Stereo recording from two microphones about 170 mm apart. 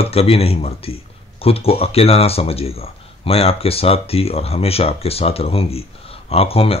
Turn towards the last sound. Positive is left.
turn(degrees=35)  # may be behind; listen again after turning